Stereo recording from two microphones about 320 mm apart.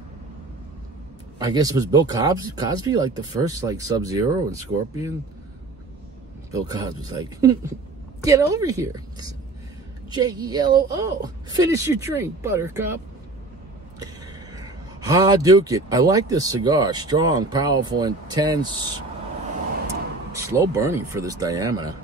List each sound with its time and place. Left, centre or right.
1.4 s speech: centre
6.5 s a man's voice: centre
20.3 s speech: centre